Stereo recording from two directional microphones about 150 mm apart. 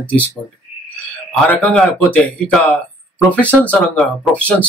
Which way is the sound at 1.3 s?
10° left (ahead or behind).